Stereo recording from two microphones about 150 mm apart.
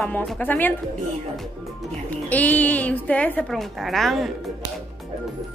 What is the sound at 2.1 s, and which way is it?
A woman's voice, 10° left (ahead or behind).